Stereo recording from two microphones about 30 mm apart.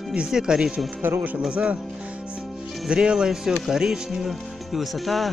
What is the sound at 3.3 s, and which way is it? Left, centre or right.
Speech, centre.